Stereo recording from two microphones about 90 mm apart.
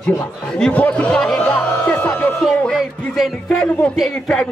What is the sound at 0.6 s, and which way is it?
Speech, 10° left (ahead or behind).